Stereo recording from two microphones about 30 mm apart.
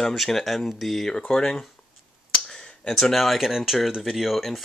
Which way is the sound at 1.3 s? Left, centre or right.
Left.